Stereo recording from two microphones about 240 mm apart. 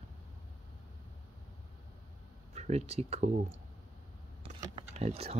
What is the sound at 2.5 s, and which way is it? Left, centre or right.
Speech, right.